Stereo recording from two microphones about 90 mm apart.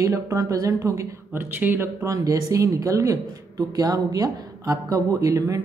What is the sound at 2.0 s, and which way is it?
Speech, 40° right (ahead or behind).